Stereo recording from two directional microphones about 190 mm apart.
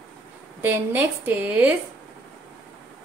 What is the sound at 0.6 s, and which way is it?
A woman's voice, 10° right (ahead or behind).